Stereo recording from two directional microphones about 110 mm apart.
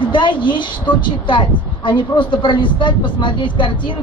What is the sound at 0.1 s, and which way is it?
A woman's voice, 45° left (ahead or behind).